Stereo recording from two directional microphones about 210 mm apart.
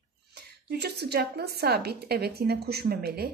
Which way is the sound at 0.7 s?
50° right (ahead or behind).